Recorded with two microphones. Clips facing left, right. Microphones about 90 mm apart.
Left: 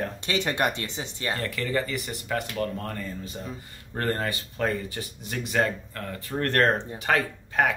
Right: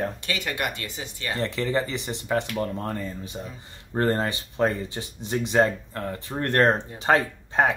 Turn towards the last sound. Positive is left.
turn(degrees=-25)  # may be behind; listen again after turning